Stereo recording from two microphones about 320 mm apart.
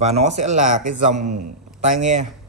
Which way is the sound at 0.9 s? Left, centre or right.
Right.